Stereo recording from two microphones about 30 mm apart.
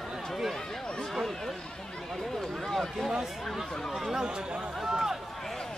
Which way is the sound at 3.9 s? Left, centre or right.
Centre.